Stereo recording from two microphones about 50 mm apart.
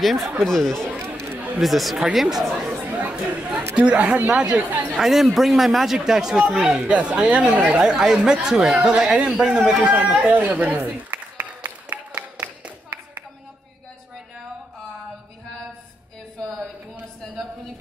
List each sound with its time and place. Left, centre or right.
0.0 s speech: centre
2.5 s chatter: right
3.1 s chatter: right
3.7 s speech: right
4.6 s chatter: right
4.9 s speech: centre; by 7.7 s right
7.7 s speech: centre
9.8 s speech: right
12.1 s a sound: centre